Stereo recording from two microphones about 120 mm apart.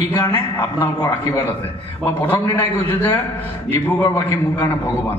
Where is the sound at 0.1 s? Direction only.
20° left (ahead or behind).